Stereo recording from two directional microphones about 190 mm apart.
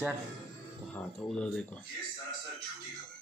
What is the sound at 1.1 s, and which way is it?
Speech, 5° left (ahead or behind).